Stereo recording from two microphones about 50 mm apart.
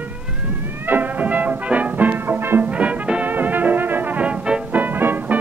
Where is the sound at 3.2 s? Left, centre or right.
Right.